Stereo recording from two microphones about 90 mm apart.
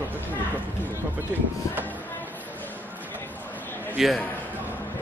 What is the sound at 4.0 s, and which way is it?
Speech, centre (ahead or behind).